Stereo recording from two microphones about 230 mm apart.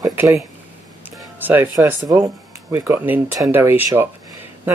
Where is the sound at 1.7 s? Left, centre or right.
Centre.